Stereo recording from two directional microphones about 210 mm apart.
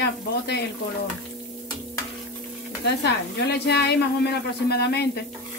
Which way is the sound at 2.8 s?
50° left (ahead or behind).